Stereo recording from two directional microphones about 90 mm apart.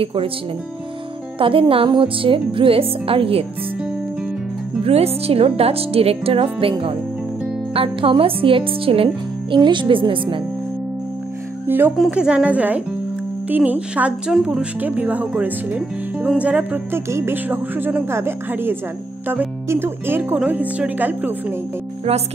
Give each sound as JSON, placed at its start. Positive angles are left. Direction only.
{"t": 0.0, "sound": "speech", "side_deg": -90}
{"t": 1.4, "sound": "speech", "side_deg": -80}
{"t": 4.8, "sound": "speech", "side_deg": -90}
{"t": 11.6, "sound": "speech", "side_deg": -25}
{"t": 12.1, "sound": "speech", "side_deg": -10}